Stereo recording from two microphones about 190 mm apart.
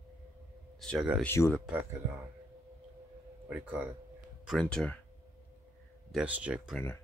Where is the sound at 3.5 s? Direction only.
10° right (ahead or behind).